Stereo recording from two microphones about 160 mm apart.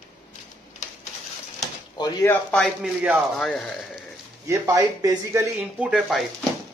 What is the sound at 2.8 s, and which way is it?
Speech, 5° right (ahead or behind).